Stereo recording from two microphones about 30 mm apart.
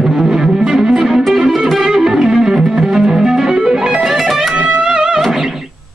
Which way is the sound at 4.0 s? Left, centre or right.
Centre.